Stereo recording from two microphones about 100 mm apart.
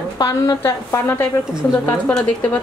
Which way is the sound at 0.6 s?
25° left (ahead or behind).